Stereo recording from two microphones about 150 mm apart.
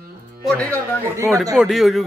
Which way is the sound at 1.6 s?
Centre (ahead or behind).